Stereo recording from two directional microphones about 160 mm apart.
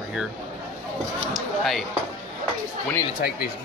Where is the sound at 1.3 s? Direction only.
Centre (ahead or behind).